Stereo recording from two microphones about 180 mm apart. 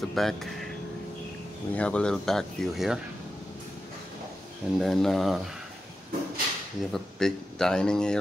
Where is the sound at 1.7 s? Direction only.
5° left (ahead or behind).